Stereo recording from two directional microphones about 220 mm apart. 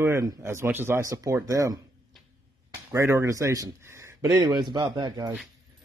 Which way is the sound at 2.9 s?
15° right (ahead or behind).